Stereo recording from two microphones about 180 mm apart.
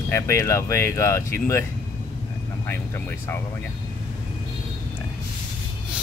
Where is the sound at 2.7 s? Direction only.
15° left (ahead or behind).